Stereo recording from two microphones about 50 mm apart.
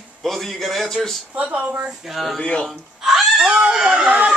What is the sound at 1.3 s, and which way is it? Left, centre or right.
Speech, right.